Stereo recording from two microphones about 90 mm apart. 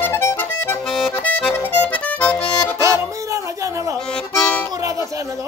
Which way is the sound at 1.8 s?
15° left (ahead or behind).